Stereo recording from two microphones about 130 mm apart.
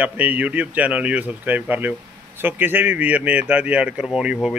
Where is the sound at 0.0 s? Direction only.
10° right (ahead or behind).